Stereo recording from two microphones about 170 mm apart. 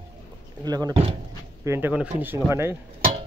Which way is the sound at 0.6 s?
25° right (ahead or behind).